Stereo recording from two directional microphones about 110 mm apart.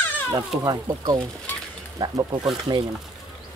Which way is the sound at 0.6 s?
35° right (ahead or behind).